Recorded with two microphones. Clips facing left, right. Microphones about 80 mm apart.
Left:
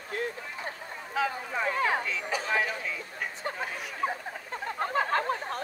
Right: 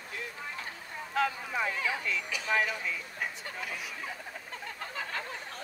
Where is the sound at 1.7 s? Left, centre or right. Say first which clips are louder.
Left 6 dB; left.